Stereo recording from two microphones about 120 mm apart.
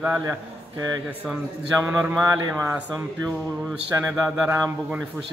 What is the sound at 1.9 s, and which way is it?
Speech, 20° right (ahead or behind).